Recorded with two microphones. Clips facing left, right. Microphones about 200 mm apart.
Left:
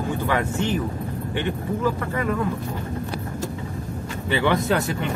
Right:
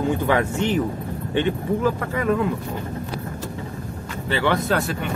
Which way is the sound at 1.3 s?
20° right (ahead or behind).